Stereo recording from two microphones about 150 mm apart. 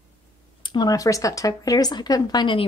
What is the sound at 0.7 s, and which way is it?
A woman's voice, 25° left (ahead or behind).